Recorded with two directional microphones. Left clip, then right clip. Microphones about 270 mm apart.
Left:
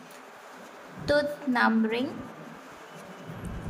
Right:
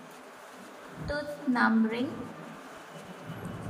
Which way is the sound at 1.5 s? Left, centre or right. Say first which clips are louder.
Left 2 dB; left.